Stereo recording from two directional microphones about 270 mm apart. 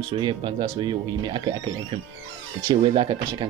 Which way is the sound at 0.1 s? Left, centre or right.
Centre.